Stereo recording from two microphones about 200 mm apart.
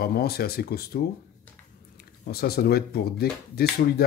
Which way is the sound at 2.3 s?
50° left (ahead or behind).